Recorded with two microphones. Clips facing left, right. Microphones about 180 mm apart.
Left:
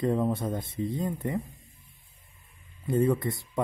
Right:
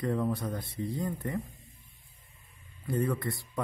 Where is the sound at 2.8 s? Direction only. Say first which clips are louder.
Left 5 dB; 25° left (ahead or behind).